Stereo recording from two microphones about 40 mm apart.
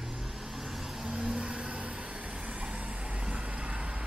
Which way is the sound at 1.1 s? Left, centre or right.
Right.